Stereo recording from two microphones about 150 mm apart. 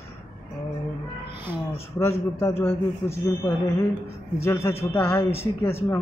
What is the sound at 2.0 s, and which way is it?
Speech, 15° left (ahead or behind).